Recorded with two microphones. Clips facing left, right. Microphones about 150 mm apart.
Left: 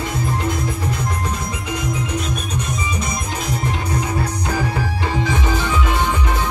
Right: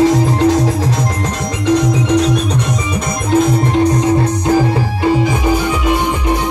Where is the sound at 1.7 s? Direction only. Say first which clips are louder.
Right 13 dB; 80° right.